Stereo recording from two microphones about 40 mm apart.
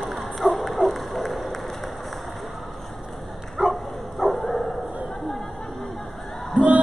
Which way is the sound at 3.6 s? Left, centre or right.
Centre.